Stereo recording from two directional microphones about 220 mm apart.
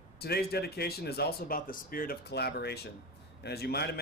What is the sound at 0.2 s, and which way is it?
A man's voice, 45° left (ahead or behind).